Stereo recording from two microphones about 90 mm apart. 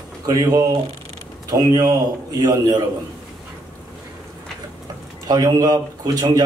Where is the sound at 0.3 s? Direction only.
40° right (ahead or behind).